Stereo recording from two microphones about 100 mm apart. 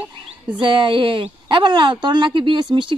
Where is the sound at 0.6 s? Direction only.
55° right (ahead or behind).